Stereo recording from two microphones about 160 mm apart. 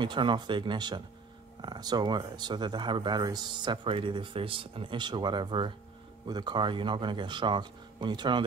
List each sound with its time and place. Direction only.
0.0 s speech: 30° right (ahead or behind)